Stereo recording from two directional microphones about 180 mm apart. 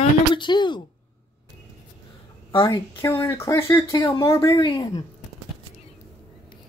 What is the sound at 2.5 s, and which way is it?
Speech, 30° left (ahead or behind).